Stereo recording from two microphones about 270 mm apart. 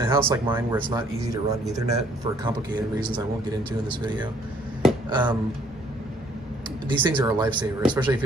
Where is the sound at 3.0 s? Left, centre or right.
Centre.